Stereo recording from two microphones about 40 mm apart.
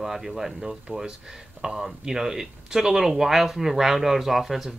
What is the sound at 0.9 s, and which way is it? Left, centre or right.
Speech, right.